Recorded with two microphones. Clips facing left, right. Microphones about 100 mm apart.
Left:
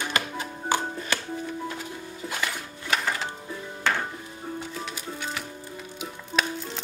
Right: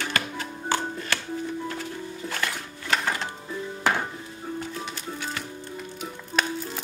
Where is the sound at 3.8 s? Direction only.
10° right (ahead or behind).